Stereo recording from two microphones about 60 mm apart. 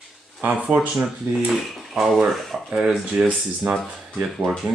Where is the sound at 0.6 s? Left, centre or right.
Right.